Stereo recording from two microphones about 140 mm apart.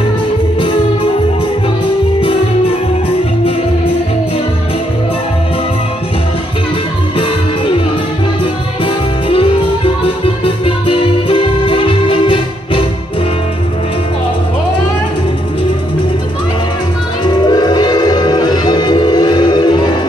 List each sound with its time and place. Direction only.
7.2 s music: 40° left (ahead or behind)
8.8 s music: 40° left (ahead or behind)
17.2 s music: 30° left (ahead or behind)